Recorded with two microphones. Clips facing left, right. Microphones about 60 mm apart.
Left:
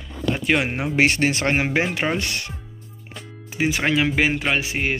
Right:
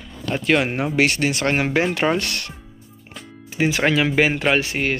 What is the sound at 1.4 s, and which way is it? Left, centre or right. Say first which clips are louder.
Speech: right 1 dB; centre.